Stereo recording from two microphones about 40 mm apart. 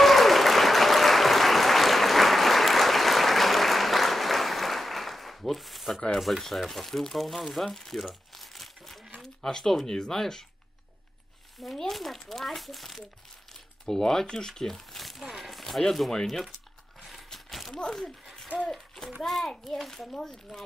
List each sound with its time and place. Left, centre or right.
0.0 s applause: centre
6.1 s speech: centre
9.2 s a sound: centre
9.7 s speech: centre
11.9 s speech: centre
13.8 s speech: centre
17.0 s a sound: centre
18.7 s a child's voice: centre